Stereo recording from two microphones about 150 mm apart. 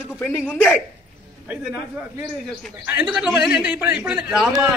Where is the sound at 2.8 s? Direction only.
10° right (ahead or behind).